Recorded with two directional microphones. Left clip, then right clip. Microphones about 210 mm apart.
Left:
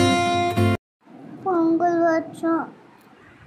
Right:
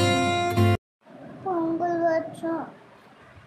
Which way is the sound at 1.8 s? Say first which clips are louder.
Left 4 dB; 15° left (ahead or behind).